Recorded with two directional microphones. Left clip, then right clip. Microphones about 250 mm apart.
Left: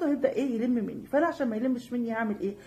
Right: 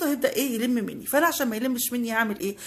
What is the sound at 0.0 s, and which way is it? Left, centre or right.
A woman's voice, right.